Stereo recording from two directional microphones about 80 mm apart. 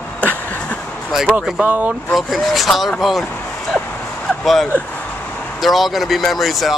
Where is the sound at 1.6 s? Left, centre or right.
Right.